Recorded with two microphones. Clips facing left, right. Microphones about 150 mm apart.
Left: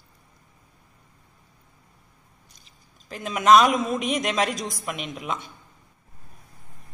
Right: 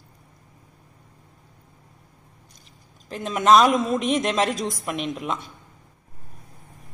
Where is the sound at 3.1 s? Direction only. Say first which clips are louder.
Even; centre (ahead or behind).